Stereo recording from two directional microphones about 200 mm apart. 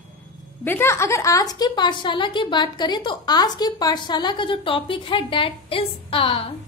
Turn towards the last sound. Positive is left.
turn(degrees=25)  # may be behind; listen again after turning